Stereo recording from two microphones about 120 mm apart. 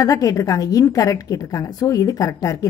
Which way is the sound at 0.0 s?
30° left (ahead or behind).